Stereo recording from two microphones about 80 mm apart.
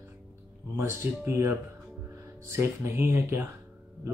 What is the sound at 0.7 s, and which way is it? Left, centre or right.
Speech, right.